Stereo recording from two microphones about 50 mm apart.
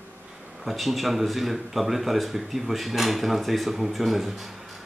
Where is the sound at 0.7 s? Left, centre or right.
Centre.